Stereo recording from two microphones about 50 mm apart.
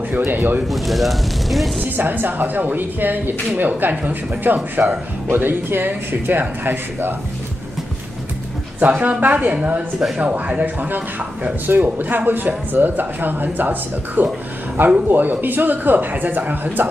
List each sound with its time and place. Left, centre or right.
0.1 s speech: right
0.7 s speech: centre
2.0 s speech: right
8.7 s speech: right